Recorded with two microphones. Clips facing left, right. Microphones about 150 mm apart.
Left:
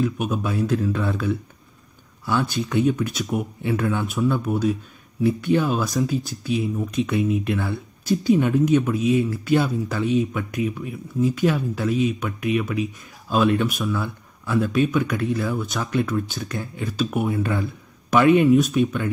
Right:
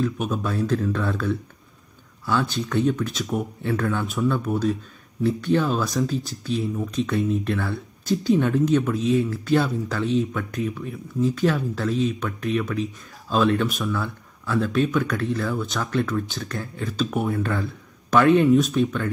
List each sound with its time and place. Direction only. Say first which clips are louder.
0.0 s speech: left 1 dB; 10° left (ahead or behind)
2.7 s speech: left 2 dB; 15° left (ahead or behind)
3.2 s speech: left 1 dB; centre (ahead or behind)
13.9 s speech: left 1 dB; 15° left (ahead or behind)